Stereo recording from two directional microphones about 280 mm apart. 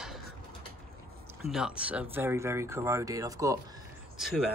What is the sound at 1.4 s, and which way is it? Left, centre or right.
Speech, centre.